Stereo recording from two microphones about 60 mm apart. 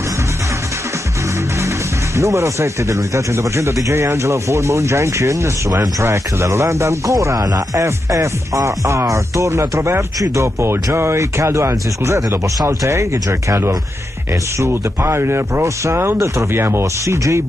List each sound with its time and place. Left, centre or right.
2.1 s speech: right
6.0 s speech: right
7.3 s speech: right
7.8 s speech: right